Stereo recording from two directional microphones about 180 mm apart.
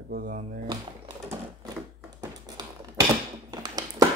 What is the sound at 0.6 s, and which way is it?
Speech, 25° right (ahead or behind).